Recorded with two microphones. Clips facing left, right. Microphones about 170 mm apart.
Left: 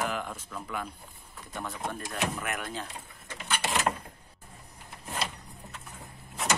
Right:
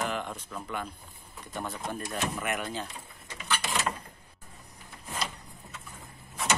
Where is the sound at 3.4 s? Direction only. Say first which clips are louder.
Left 2 dB; 60° left (ahead or behind).